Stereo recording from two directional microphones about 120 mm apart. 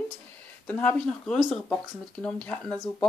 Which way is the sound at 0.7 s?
15° left (ahead or behind).